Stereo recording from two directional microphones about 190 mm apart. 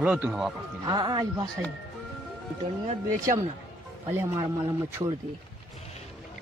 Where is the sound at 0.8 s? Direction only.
20° right (ahead or behind).